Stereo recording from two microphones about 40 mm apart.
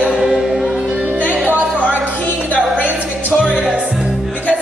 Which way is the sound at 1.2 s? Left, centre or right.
Left.